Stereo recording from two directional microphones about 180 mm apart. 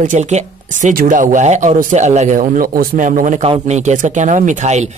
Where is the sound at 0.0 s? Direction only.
45° right (ahead or behind).